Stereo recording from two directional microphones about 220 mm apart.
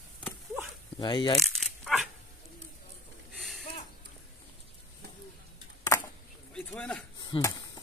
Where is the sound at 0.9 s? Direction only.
20° left (ahead or behind).